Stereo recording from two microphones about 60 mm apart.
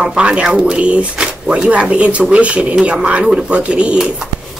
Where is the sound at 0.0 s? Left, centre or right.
Centre.